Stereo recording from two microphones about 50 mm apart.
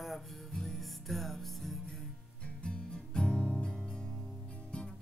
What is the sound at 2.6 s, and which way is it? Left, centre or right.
Music, centre.